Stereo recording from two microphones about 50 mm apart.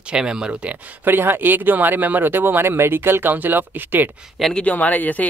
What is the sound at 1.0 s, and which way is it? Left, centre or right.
Speech, right.